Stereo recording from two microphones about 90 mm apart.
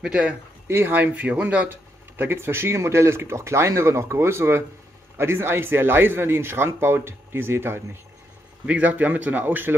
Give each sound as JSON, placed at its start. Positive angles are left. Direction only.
{"t": 0.0, "sound": "speech", "side_deg": -10}
{"t": 0.7, "sound": "speech", "side_deg": -25}
{"t": 1.7, "sound": "speech", "side_deg": -25}